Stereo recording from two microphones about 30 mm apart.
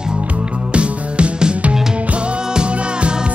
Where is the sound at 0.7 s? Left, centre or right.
Right.